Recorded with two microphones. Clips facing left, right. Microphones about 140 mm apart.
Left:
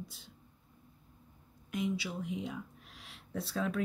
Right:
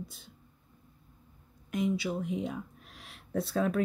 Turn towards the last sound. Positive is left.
turn(degrees=-50)  # may be behind; listen again after turning